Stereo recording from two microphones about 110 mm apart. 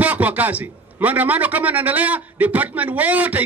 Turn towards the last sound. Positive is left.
turn(degrees=-15)  # may be behind; listen again after turning